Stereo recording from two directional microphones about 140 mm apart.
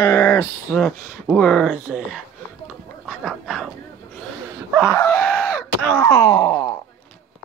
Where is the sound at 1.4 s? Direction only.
Centre (ahead or behind).